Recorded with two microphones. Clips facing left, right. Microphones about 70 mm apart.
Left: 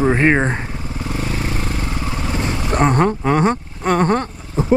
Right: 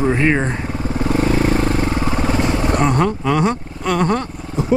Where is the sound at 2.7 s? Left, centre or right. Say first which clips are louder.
Left 5 dB; left.